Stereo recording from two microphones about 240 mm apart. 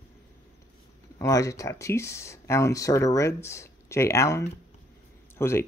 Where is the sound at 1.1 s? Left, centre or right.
Centre.